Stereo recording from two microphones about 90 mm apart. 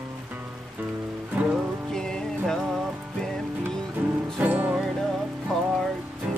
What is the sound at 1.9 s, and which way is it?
Music, 5° left (ahead or behind).